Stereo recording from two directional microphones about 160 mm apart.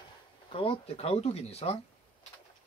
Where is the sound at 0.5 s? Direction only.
35° left (ahead or behind).